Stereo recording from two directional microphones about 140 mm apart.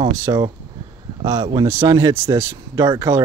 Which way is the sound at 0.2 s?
30° right (ahead or behind).